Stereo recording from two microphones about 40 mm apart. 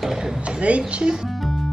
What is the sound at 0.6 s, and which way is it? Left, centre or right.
Speech, right.